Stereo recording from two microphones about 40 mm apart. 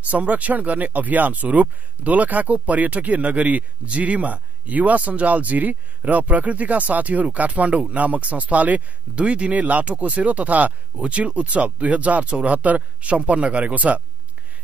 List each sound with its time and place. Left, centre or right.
0.1 s speech: right